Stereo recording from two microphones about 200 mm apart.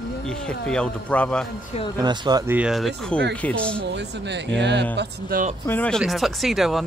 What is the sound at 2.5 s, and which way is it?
A man's voice, 5° right (ahead or behind).